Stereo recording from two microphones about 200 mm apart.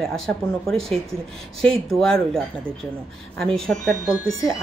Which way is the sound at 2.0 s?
Centre (ahead or behind).